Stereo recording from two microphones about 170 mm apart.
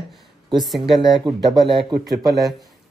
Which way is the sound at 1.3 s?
25° right (ahead or behind).